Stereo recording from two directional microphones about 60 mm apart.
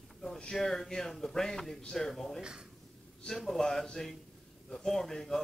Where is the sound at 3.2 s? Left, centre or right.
Centre.